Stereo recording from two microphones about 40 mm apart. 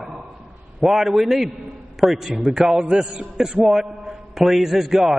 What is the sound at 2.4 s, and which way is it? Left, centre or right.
A man's voice, centre.